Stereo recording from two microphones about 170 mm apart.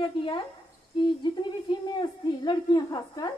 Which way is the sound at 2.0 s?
25° left (ahead or behind).